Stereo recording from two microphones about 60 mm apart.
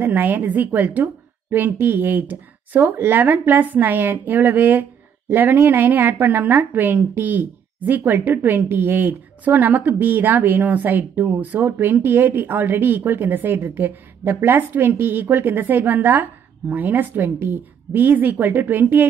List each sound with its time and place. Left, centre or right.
0.0 s a woman's voice: right